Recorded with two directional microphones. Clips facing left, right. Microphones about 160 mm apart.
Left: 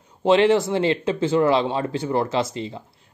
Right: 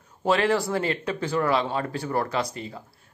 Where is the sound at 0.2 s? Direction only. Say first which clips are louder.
Left 6 dB; 20° left (ahead or behind).